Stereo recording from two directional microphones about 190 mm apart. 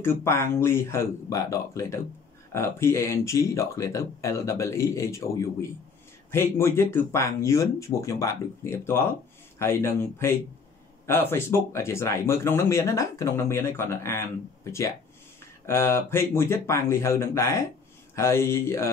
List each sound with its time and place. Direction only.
0.0 s speech: 15° left (ahead or behind)